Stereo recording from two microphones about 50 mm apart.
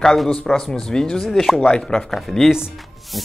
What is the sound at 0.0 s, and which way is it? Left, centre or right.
Speech, centre.